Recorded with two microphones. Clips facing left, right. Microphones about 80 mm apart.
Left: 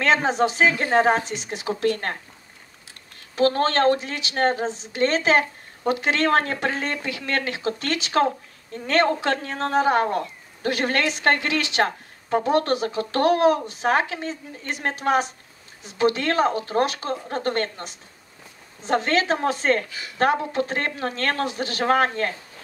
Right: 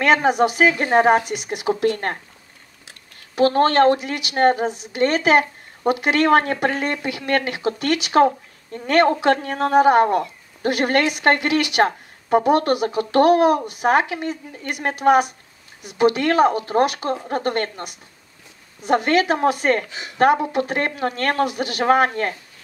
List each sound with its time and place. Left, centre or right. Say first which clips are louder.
0.0 s a woman's voice: right 4 dB; centre
3.7 s a woman's voice: right 4 dB; centre
7.1 s a woman's voice: right 5 dB; right
7.3 s a woman's voice: right 4 dB; centre
10.7 s a woman's voice: right 4 dB; right
11.1 s a woman's voice: right 3 dB; centre
11.4 s a woman's voice: right 5 dB; right
12.3 s a woman's voice: right 4 dB; centre
20.2 s a woman's voice: right 4 dB; centre